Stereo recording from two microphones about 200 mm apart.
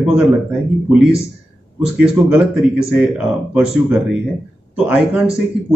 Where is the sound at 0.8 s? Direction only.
Centre (ahead or behind).